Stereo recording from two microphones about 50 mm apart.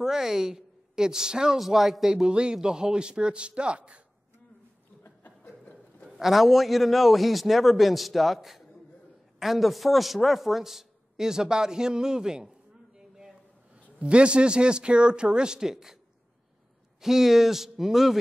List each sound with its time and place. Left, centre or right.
0.0 s a woman's voice: centre
1.6 s a man's voice: centre
2.2 s a man's voice: centre
5.0 s chuckle: left
5.6 s a sound: left
6.0 s a man's voice: centre
17.0 s a man's voice: centre